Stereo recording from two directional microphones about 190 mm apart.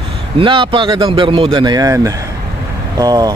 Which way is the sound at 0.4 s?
25° right (ahead or behind).